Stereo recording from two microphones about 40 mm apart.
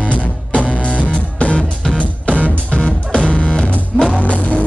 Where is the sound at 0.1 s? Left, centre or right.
Left.